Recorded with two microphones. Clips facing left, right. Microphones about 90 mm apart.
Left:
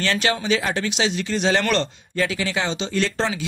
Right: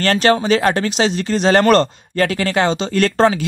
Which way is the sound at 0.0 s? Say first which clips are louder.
Right 8 dB; 50° right (ahead or behind).